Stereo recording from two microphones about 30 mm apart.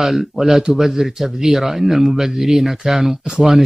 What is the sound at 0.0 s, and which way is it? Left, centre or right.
A man's voice, centre.